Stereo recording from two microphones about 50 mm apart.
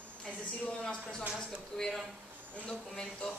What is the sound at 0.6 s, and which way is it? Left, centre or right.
A woman's voice, centre.